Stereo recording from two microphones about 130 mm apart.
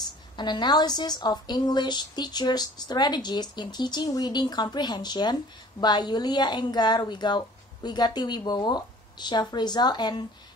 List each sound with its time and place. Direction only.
0.4 s a woman's voice: 35° left (ahead or behind)